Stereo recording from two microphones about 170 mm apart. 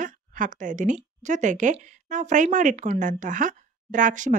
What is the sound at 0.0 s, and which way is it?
Speech, 50° right (ahead or behind).